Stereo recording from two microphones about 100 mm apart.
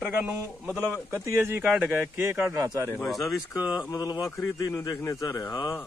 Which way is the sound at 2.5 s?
40° right (ahead or behind).